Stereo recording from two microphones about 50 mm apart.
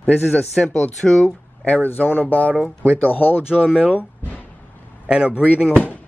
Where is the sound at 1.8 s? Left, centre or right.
Left.